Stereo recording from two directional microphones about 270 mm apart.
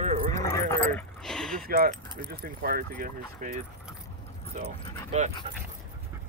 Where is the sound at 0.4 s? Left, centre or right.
Centre.